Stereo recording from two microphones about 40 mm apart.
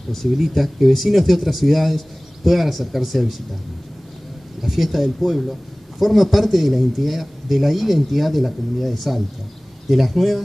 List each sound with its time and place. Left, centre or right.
0.1 s a man's voice: centre
4.6 s a man's voice: centre